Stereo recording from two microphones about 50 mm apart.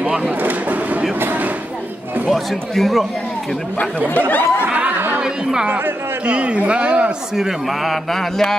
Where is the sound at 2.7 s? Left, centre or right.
Centre.